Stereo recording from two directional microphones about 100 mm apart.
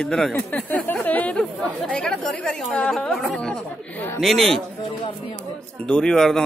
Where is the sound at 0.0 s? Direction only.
5° left (ahead or behind).